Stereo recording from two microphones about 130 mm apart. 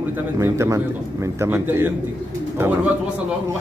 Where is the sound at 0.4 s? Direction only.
20° right (ahead or behind).